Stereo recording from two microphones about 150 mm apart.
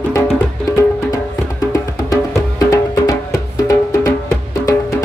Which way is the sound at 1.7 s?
20° left (ahead or behind).